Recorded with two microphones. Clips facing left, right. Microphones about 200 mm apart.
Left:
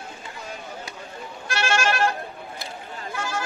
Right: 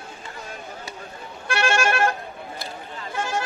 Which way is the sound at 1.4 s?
55° right (ahead or behind).